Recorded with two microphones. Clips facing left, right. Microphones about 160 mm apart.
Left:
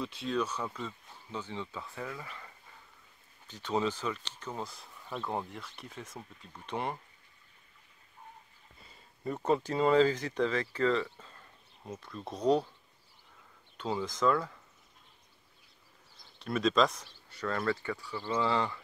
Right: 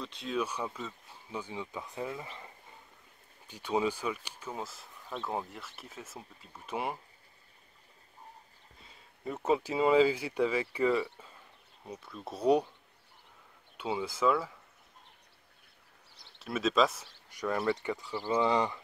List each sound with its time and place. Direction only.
0.0 s speech: centre (ahead or behind); by 2.5 s 25° right (ahead or behind)
3.4 s speech: 10° right (ahead or behind)
8.8 s speech: centre (ahead or behind)
13.7 s speech: 5° right (ahead or behind)
16.1 s a sound: 75° right (ahead or behind)
16.3 s speech: 5° right (ahead or behind)